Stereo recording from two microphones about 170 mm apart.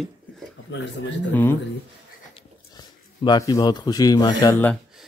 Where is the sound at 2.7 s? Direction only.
25° left (ahead or behind).